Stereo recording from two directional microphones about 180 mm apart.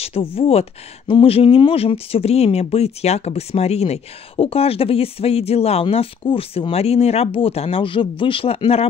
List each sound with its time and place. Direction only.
0.0 s speech: 30° left (ahead or behind)